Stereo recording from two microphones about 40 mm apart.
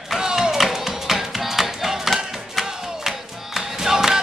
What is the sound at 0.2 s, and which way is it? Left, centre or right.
Music, centre.